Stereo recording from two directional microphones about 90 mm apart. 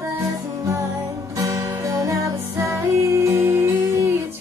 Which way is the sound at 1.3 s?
40° right (ahead or behind).